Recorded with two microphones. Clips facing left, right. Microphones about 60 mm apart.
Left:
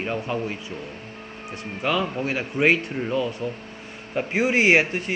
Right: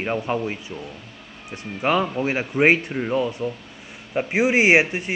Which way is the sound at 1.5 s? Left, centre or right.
Right.